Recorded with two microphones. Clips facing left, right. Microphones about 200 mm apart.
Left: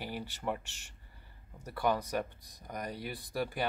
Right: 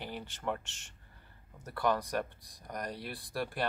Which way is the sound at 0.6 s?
60° left (ahead or behind).